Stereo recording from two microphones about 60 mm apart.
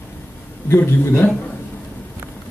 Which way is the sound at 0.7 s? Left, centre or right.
Left.